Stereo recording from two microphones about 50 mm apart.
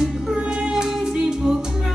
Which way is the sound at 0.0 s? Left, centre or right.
Centre.